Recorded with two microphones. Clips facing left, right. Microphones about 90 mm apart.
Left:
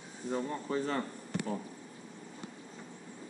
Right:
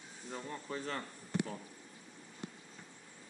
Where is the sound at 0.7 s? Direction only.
10° left (ahead or behind).